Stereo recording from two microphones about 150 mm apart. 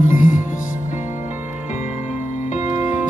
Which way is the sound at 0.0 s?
60° left (ahead or behind).